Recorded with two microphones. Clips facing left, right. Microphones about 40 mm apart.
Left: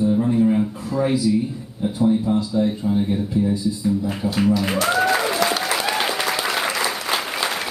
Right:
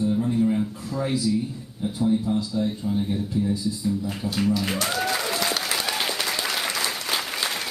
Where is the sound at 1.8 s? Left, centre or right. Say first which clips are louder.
Left 4 dB; centre.